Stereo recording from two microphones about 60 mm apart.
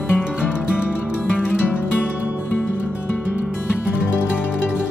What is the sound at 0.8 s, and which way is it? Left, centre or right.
Music, left.